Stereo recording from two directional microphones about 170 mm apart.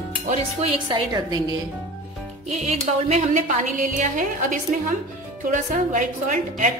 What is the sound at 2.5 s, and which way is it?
A woman's voice, 40° right (ahead or behind).